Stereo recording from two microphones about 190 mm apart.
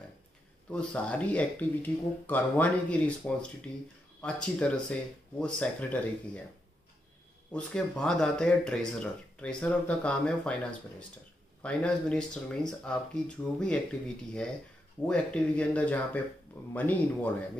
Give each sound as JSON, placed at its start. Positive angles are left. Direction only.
{"t": 0.7, "sound": "speech", "side_deg": 5}
{"t": 7.5, "sound": "speech", "side_deg": 5}